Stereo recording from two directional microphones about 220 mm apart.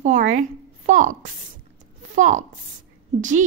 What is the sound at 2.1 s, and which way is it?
Speech, 35° right (ahead or behind).